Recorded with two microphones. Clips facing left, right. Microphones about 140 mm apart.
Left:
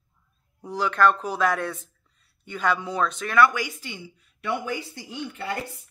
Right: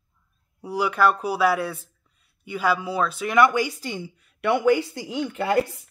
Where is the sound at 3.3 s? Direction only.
25° right (ahead or behind); by 4.0 s 40° right (ahead or behind).